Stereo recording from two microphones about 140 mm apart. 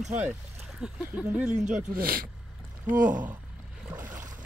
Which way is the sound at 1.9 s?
90° right.